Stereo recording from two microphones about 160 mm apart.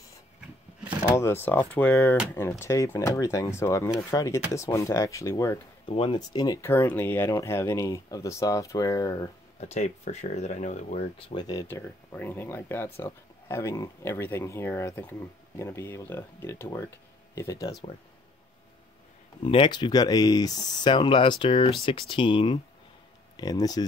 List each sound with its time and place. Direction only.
1.1 s speech: 15° left (ahead or behind)
5.9 s speech: 35° left (ahead or behind)
9.6 s speech: 45° left (ahead or behind)
11.1 s speech: 30° left (ahead or behind)
11.6 s speech: 15° left (ahead or behind)
19.4 s speech: 35° left (ahead or behind)